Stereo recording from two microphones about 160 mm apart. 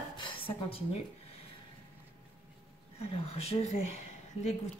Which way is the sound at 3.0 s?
40° left (ahead or behind).